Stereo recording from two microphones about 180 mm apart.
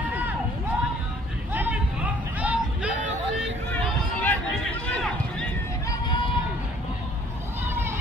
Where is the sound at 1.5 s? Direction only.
10° right (ahead or behind).